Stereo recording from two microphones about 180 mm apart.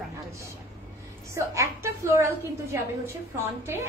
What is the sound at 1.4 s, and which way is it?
A woman's voice, 15° right (ahead or behind).